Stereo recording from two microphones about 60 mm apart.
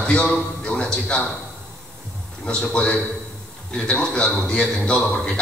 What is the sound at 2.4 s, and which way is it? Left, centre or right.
A man's voice, centre.